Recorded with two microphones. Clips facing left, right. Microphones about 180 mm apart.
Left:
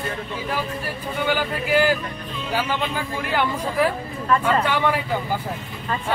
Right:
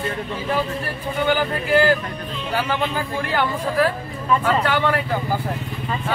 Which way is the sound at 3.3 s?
15° left (ahead or behind).